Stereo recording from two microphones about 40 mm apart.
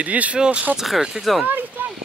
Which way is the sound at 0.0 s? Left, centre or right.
Right.